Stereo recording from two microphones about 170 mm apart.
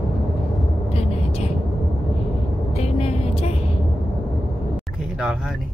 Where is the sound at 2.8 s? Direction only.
35° left (ahead or behind).